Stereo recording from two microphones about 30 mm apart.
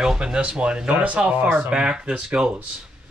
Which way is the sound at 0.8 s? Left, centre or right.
Right.